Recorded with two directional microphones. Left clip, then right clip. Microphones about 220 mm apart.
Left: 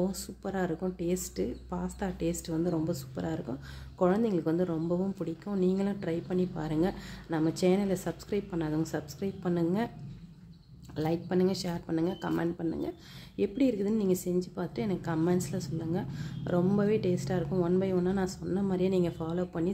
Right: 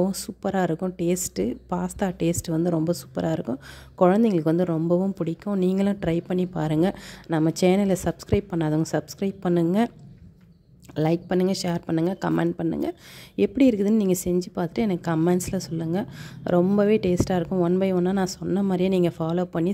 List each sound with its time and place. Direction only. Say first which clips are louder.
0.0 s a woman's voice: right 8 dB; 35° right (ahead or behind)
11.0 s a woman's voice: right 7 dB; 35° right (ahead or behind)